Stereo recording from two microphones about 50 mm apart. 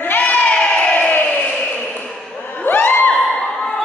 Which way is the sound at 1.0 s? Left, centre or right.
Left.